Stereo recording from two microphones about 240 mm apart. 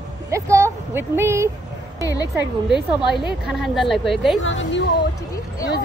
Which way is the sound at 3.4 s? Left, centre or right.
Centre.